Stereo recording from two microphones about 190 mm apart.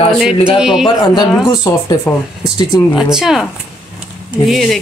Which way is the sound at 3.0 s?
5° right (ahead or behind).